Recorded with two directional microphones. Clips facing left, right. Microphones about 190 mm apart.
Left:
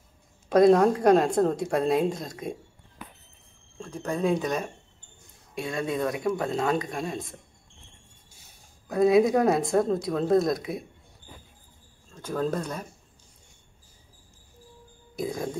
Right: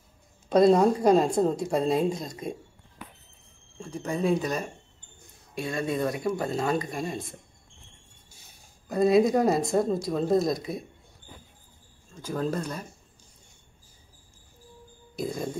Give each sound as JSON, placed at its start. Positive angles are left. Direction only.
{"t": 0.6, "sound": "speech", "side_deg": 0}
{"t": 3.8, "sound": "speech", "side_deg": -10}
{"t": 8.9, "sound": "speech", "side_deg": 0}
{"t": 12.2, "sound": "speech", "side_deg": -5}
{"t": 15.2, "sound": "speech", "side_deg": 0}